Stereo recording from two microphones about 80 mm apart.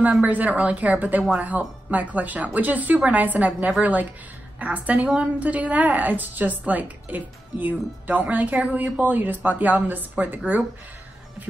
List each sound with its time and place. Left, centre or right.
0.0 s a woman's voice: centre